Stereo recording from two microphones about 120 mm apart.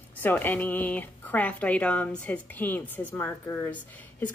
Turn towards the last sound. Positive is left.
turn(degrees=15)  # may be behind; listen again after turning